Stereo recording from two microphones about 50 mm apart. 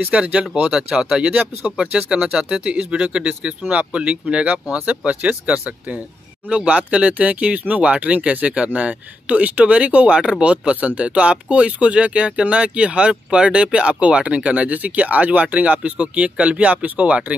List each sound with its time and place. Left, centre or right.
0.2 s speech: right